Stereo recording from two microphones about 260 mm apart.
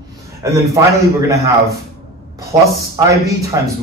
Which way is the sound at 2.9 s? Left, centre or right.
Centre.